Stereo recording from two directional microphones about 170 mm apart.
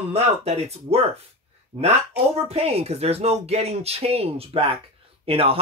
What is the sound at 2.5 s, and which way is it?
Speech, 35° right (ahead or behind).